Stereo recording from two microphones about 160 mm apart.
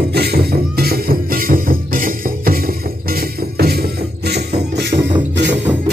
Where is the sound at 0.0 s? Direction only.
80° right.